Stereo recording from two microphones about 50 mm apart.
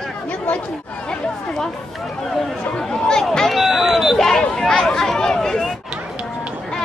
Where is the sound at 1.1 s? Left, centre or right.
Centre.